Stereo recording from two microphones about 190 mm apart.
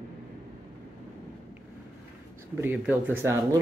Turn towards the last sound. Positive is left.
turn(degrees=-15)  # may be behind; listen again after turning